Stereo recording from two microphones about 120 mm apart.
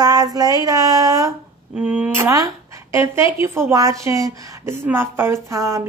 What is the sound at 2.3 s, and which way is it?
A woman's voice, 25° right (ahead or behind).